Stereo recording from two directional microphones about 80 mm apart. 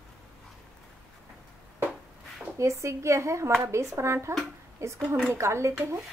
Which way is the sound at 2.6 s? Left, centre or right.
Right.